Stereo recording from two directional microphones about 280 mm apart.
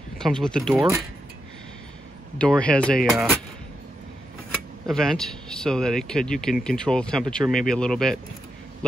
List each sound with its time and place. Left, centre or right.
0.2 s speech: centre
2.3 s speech: centre
4.8 s speech: centre